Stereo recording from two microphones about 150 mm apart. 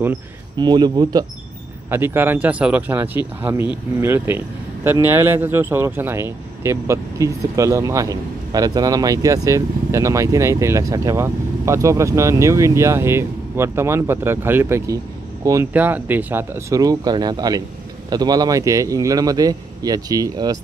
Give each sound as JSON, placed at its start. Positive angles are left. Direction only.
{"t": 0.6, "sound": "speech", "side_deg": -30}
{"t": 1.9, "sound": "speech", "side_deg": -15}